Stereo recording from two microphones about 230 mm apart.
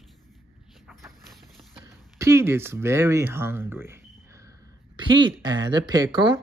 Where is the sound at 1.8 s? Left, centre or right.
Centre.